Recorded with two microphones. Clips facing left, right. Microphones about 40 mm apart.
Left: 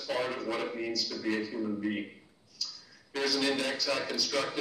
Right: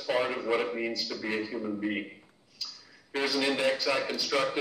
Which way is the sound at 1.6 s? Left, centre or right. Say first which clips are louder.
Right 1 dB; centre.